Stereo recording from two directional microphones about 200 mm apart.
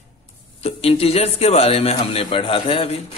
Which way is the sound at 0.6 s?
30° left (ahead or behind).